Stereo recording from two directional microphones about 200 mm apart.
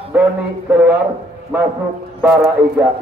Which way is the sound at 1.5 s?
5° right (ahead or behind).